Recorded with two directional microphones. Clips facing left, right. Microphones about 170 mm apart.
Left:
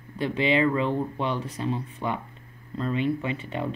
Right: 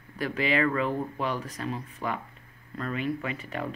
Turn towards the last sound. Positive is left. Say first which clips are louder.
# left 4 dB
turn(degrees=25)  # may be behind; listen again after turning